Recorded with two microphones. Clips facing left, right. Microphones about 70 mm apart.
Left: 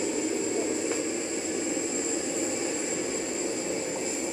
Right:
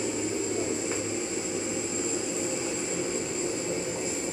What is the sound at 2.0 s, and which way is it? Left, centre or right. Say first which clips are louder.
Vehicle: even; left.